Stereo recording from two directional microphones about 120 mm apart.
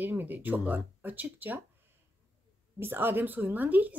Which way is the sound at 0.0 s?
15° right (ahead or behind).